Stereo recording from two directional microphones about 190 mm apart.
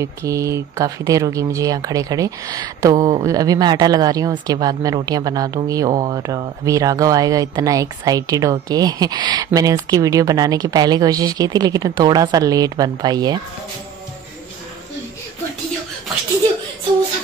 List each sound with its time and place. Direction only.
0.0 s speech: 15° right (ahead or behind)